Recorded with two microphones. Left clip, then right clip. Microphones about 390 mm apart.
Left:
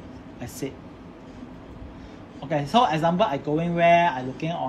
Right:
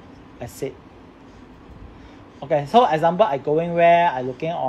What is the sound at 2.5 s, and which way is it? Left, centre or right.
A man's voice, centre.